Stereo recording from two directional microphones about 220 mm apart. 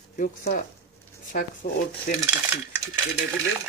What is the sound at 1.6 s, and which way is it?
Speech, 40° left (ahead or behind).